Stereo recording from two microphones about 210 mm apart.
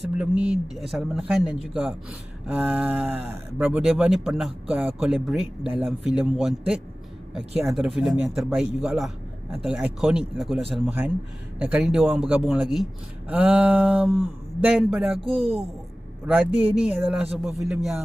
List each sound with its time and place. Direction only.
0.2 s speech: 5° right (ahead or behind)
15.3 s speech: 30° right (ahead or behind)
16.3 s speech: 5° right (ahead or behind)